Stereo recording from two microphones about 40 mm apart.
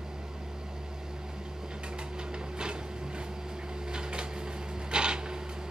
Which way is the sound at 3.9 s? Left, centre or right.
Right.